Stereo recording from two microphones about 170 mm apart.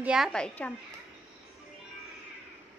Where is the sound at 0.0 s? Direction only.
5° right (ahead or behind).